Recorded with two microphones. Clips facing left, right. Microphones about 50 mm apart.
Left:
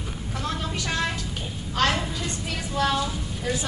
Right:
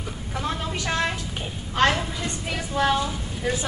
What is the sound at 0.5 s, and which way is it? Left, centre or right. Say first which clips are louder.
Vehicle: right 2 dB; centre.